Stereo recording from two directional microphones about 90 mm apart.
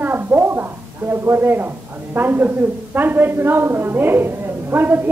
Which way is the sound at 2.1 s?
25° right (ahead or behind).